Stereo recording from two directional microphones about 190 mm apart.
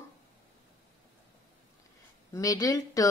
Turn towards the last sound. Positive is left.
turn(degrees=20)  # may be behind; listen again after turning